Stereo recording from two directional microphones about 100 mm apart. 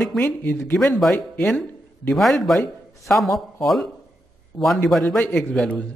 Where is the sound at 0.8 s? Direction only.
5° left (ahead or behind).